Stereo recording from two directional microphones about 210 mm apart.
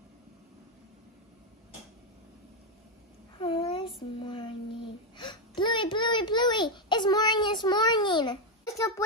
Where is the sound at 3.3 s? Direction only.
25° left (ahead or behind).